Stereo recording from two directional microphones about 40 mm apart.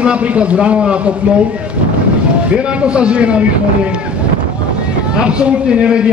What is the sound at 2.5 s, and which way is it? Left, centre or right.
Speech, right.